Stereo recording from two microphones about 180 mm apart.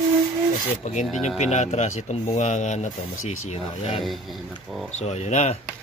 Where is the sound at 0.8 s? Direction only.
40° left (ahead or behind).